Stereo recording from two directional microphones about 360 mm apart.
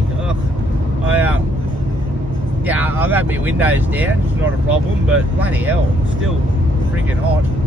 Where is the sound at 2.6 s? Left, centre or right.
Centre.